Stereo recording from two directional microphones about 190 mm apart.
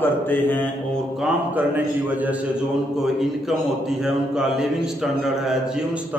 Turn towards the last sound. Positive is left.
turn(degrees=0)  # may be behind; listen again after turning